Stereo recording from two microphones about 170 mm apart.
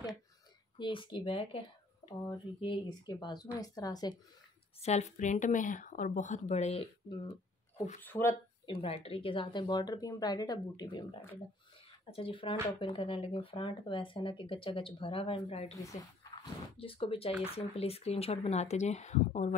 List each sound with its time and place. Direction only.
0.7 s speech: 30° left (ahead or behind)
4.8 s speech: 40° left (ahead or behind)
8.0 s speech: 15° left (ahead or behind)
8.6 s speech: 35° left (ahead or behind)